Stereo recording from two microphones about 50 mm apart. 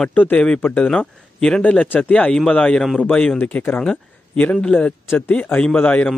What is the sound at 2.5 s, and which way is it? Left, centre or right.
Speech, left.